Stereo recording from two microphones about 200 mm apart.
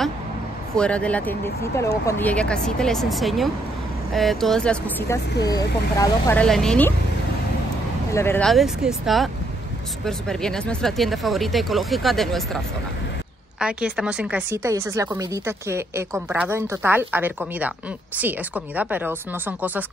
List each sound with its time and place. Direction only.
0.7 s speech: 5° left (ahead or behind)
6.4 s speech: 5° left (ahead or behind)
8.1 s speech: 10° left (ahead or behind); by 19.8 s 10° right (ahead or behind)